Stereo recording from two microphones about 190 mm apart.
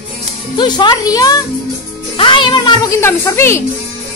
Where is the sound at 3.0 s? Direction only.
15° left (ahead or behind).